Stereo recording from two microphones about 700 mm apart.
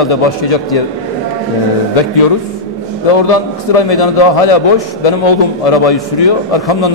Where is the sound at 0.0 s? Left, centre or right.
Left.